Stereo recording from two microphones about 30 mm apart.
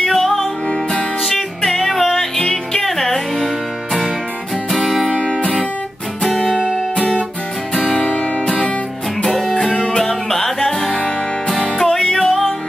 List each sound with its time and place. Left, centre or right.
0.0 s music: centre
1.8 s music: centre
4.6 s music: centre
5.2 s music: left
6.2 s music: centre
7.7 s music: left
9.4 s music: centre